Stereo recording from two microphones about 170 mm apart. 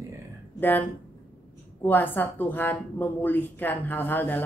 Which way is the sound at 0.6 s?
10° left (ahead or behind).